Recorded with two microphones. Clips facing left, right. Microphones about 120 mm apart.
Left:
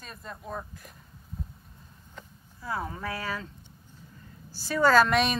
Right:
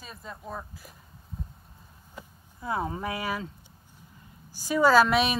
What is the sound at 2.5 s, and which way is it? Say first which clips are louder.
Speech: right 3 dB; 20° right (ahead or behind).